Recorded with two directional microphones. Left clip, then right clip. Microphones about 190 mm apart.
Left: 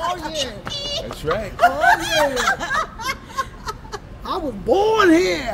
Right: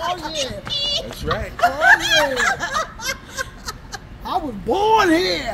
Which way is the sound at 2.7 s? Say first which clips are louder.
Left 1 dB; 30° right (ahead or behind).